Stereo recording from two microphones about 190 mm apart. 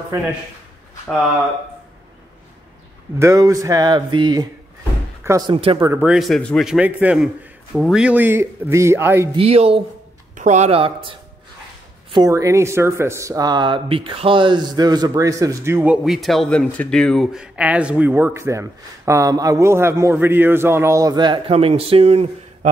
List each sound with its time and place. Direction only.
3.2 s speech: 15° right (ahead or behind)
5.5 s speech: 30° right (ahead or behind)
5.8 s speech: 15° right (ahead or behind)
6.0 s speech: centre (ahead or behind)
9.3 s speech: 30° right (ahead or behind)